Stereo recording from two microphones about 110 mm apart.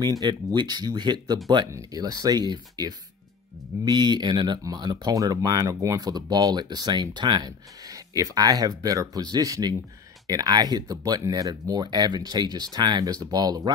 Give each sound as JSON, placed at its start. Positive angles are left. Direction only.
{"t": 0.0, "sound": "speech", "side_deg": -40}